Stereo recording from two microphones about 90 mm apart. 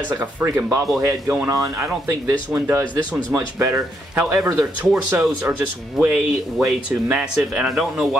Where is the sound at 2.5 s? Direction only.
20° right (ahead or behind).